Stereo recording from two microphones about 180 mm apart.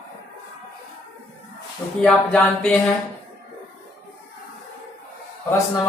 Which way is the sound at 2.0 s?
5° left (ahead or behind).